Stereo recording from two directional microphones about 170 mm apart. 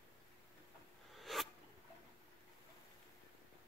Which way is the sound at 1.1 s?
Centre (ahead or behind).